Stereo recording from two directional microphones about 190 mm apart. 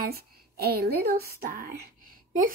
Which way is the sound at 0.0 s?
55° right (ahead or behind).